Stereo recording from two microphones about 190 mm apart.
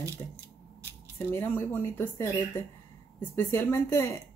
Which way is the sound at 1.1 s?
10° left (ahead or behind).